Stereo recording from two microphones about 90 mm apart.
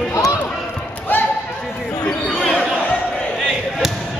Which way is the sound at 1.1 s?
25° left (ahead or behind).